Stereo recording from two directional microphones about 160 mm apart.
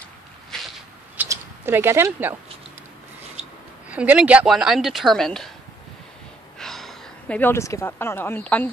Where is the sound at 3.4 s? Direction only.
40° right (ahead or behind).